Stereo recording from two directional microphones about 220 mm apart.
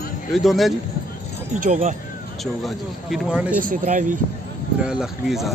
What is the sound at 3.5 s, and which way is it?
Speech, 40° right (ahead or behind).